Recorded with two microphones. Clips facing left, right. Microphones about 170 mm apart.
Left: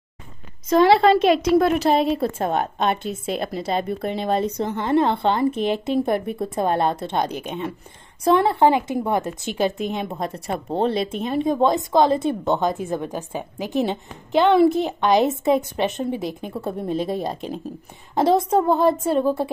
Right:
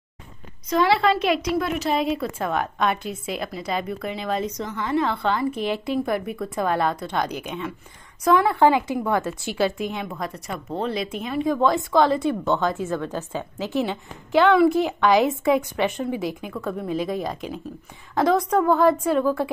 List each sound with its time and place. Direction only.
0.7 s a woman's voice: 35° left (ahead or behind)
4.6 s a woman's voice: 55° left (ahead or behind)
5.0 s a woman's voice: 25° left (ahead or behind)